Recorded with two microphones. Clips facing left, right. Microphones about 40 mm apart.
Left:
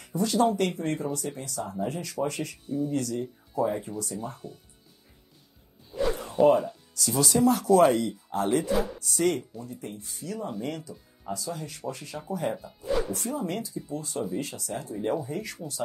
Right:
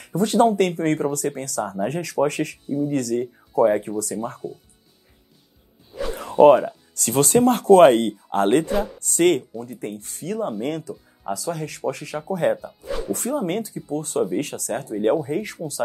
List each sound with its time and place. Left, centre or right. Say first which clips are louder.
0.0 s speech: right 6 dB; right
5.9 s a sound: right 7 dB; right
7.0 s speech: right 6 dB; right